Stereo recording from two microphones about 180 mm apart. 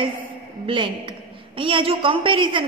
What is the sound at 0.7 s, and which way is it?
A woman's voice, 25° right (ahead or behind).